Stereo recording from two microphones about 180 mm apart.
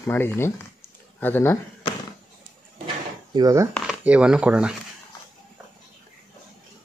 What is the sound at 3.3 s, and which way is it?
Speech, 20° right (ahead or behind).